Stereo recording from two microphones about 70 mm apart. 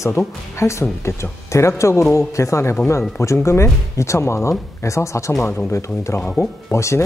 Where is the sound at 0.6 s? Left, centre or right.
Left.